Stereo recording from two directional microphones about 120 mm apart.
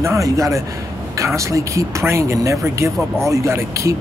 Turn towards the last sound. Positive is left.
turn(degrees=-25)  # may be behind; listen again after turning